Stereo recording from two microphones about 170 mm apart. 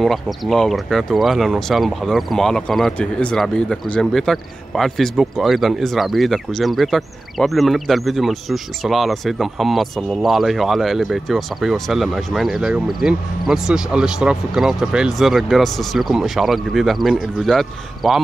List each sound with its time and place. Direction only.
0.0 s speech: centre (ahead or behind)